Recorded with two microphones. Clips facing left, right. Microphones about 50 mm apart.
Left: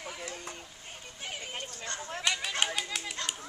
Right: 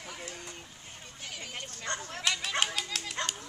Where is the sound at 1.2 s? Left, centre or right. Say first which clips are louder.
Left 2 dB; left.